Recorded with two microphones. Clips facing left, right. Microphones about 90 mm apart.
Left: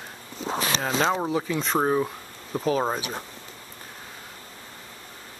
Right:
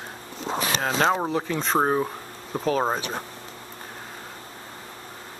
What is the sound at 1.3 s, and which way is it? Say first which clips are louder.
Speech: even; 35° right (ahead or behind).